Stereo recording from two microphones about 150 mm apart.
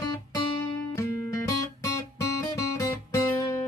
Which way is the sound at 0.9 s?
20° left (ahead or behind).